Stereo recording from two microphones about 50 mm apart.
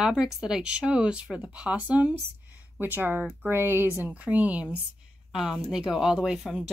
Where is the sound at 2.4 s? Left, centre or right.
Right.